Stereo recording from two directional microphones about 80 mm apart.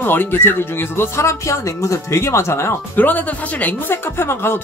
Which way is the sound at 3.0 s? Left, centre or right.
Left.